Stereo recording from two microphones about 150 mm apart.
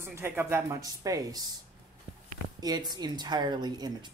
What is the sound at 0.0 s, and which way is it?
Speech, 15° right (ahead or behind).